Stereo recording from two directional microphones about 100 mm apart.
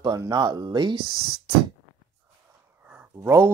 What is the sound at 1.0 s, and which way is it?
Speech, 40° left (ahead or behind).